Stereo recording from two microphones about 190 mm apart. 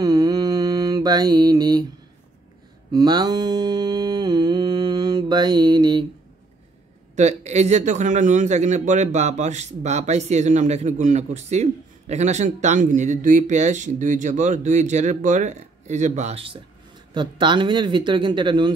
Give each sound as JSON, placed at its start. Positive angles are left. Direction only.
{"t": 0.0, "sound": "mantra", "side_deg": -20}
{"t": 2.9, "sound": "mantra", "side_deg": -20}
{"t": 7.2, "sound": "a man's voice", "side_deg": -35}